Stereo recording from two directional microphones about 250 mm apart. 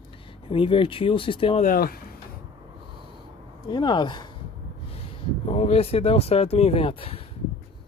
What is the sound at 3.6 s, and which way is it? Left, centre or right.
Speech, centre.